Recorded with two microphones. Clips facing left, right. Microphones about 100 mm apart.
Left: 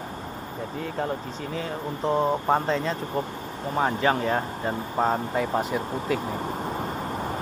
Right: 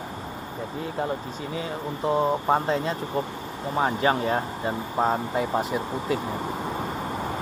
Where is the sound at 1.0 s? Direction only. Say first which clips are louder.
Right 1 dB; 10° right (ahead or behind).